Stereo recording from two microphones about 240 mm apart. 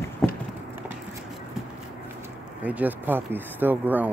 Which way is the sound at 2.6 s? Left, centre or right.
Centre.